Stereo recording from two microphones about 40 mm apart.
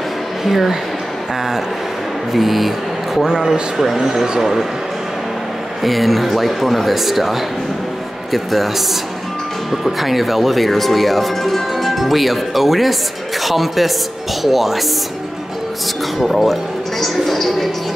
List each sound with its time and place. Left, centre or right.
0.5 s speech: centre
2.3 s speech: centre
3.3 s speech: centre
5.8 s a woman's voice: centre
16.2 s speech: centre